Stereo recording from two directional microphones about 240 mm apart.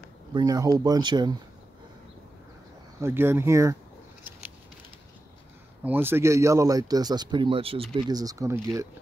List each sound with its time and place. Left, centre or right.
0.3 s speech: centre
3.0 s speech: centre
5.9 s speech: centre